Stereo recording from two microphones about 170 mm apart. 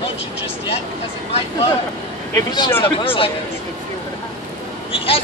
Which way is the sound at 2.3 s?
25° left (ahead or behind).